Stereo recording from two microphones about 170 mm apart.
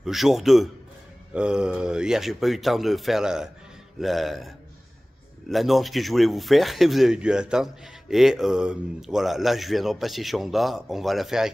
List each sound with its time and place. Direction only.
0.0 s speech: centre (ahead or behind)